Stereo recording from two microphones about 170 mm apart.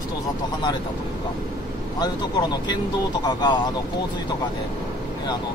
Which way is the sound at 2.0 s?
25° left (ahead or behind).